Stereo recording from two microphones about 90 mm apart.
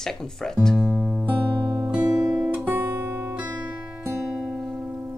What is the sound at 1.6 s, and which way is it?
Music, 50° right (ahead or behind).